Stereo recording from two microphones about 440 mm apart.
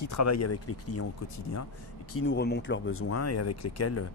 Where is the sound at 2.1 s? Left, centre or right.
Left.